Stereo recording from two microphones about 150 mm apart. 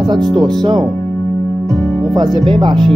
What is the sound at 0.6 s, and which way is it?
Speech, 30° right (ahead or behind).